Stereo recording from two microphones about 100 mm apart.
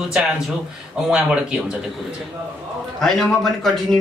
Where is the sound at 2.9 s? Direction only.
5° left (ahead or behind).